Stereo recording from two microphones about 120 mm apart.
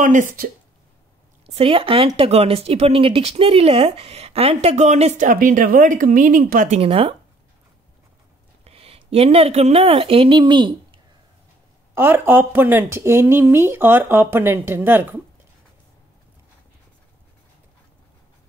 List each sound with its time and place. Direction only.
0.0 s a woman's voice: 90° right
1.4 s a woman's voice: 55° right (ahead or behind); by 5.3 s 75° right (ahead or behind)
5.8 s a woman's voice: 90° right
6.8 s speech: 55° right (ahead or behind)
8.6 s speech: 55° right (ahead or behind)
11.9 s speech: 20° right (ahead or behind)